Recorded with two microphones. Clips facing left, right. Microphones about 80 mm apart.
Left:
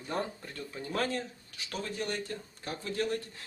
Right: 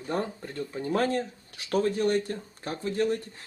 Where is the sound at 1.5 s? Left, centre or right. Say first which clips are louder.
Right 11 dB; right.